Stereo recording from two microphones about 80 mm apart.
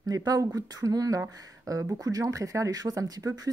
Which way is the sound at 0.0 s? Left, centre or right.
Right.